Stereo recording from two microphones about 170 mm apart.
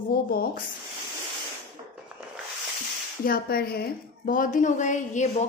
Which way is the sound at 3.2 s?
60° left (ahead or behind).